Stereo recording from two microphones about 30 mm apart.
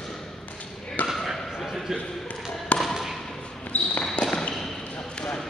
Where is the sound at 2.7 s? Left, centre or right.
Left.